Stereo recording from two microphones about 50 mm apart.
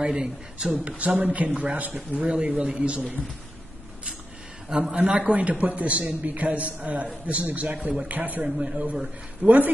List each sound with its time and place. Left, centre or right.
0.0 s speech: centre
0.7 s a man's voice: right
4.6 s a man's voice: centre
4.9 s a man's voice: right